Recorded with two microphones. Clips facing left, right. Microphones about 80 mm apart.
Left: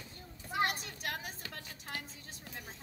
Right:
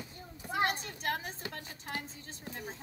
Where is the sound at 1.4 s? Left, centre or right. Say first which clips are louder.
Right 5 dB; right.